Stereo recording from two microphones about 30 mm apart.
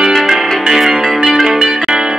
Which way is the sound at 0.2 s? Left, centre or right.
Centre.